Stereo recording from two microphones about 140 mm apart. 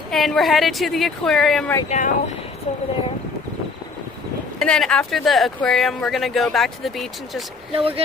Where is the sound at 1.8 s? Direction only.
60° left (ahead or behind).